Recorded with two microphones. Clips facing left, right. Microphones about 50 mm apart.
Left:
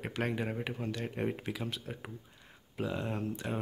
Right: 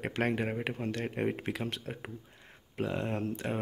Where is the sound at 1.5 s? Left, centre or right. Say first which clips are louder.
Right 2 dB; right.